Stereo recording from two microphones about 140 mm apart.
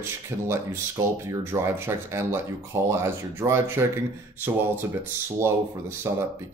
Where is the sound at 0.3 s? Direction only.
20° right (ahead or behind).